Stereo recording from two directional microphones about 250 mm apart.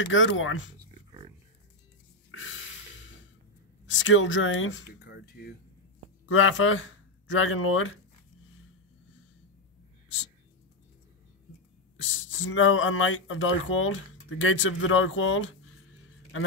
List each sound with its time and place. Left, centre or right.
0.0 s speech: left
0.7 s a sound: centre
2.3 s snort: left
3.8 s speech: left
6.2 s speech: left
12.0 s speech: left